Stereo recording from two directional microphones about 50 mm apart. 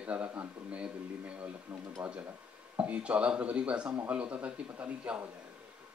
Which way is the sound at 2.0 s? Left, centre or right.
Right.